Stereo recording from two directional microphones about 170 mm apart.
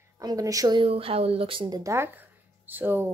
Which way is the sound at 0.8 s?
35° right (ahead or behind).